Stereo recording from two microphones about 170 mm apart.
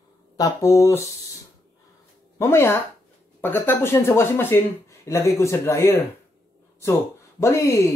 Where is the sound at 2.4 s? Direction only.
15° left (ahead or behind).